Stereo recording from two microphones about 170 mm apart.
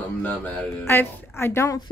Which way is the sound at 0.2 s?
10° left (ahead or behind).